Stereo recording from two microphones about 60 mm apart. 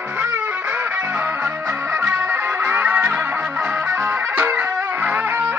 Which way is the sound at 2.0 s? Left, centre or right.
Right.